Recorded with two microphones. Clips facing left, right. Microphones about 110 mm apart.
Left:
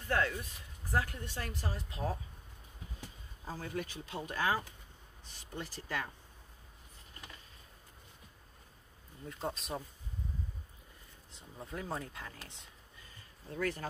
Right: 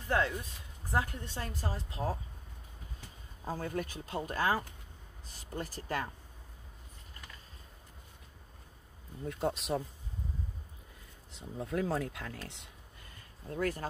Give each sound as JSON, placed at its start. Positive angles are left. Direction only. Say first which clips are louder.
{"t": 0.1, "sound": "speech", "louder": "right 2 dB", "side_deg": -20}
{"t": 3.4, "sound": "speech", "louder": "right 4 dB", "side_deg": -50}
{"t": 9.2, "sound": "speech", "louder": "right 6 dB", "side_deg": -65}
{"t": 11.3, "sound": "speech", "louder": "right 9 dB", "side_deg": -85}
{"t": 13.1, "sound": "a sound", "louder": "right 4 dB", "side_deg": -45}